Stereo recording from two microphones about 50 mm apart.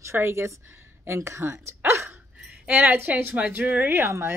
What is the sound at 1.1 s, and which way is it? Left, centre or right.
Speech, right.